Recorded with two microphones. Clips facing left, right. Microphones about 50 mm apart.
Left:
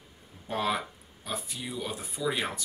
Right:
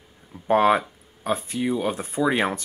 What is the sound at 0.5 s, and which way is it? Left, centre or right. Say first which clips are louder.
Speech: right 12 dB; right.